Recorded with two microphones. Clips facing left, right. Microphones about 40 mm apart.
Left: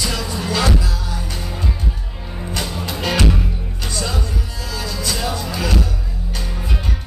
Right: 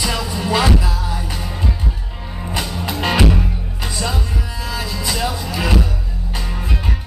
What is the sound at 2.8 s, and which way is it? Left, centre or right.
Music, centre.